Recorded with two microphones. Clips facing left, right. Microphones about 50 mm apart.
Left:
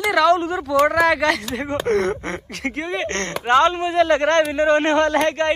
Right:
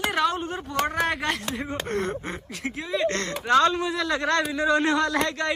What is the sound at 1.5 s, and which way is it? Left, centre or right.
Speech, left.